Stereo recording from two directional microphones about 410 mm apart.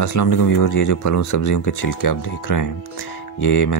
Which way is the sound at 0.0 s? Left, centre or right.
Left.